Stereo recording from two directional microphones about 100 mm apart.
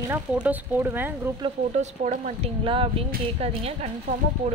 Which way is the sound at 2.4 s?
65° right (ahead or behind).